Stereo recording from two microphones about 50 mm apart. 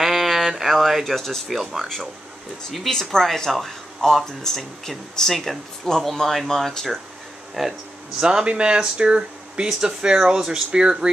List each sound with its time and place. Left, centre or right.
0.0 s a sound: centre
1.6 s speech: centre
2.9 s speech: centre
8.2 s speech: centre